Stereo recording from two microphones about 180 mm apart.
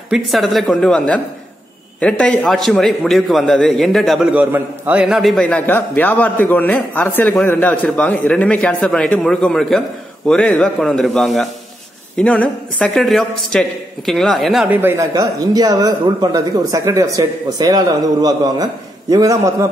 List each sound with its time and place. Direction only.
0.1 s a man's voice: centre (ahead or behind)
14.8 s speech: 15° right (ahead or behind)